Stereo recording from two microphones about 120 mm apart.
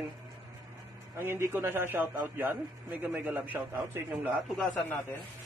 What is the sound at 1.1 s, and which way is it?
A man's voice, 20° right (ahead or behind).